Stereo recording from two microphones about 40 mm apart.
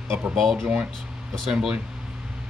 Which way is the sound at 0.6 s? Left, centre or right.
Right.